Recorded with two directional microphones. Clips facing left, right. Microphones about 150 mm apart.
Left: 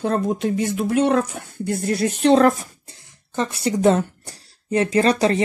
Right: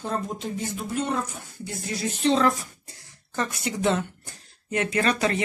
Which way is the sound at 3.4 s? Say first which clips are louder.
Left 7 dB; 30° left (ahead or behind).